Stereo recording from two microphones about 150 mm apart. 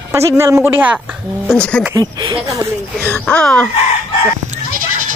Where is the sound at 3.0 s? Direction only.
10° left (ahead or behind).